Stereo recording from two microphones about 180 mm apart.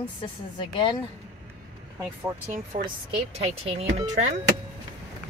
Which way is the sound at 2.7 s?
35° right (ahead or behind).